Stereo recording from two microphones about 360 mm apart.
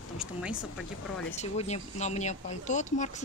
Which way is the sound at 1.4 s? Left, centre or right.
Centre.